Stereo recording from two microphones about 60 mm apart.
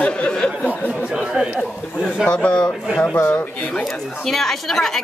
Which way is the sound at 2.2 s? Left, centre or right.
Centre.